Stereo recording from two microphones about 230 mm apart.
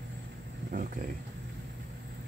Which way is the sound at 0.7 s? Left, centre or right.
Right.